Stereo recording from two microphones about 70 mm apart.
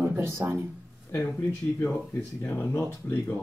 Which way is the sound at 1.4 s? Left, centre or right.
Left.